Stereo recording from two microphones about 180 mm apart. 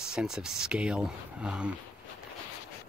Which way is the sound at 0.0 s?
5° right (ahead or behind).